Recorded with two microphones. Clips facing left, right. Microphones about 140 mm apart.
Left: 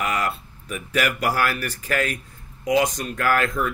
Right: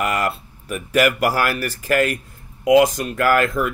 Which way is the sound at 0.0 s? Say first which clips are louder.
Right 4 dB; 60° right (ahead or behind).